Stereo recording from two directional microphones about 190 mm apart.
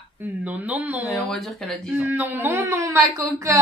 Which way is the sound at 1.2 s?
Centre (ahead or behind).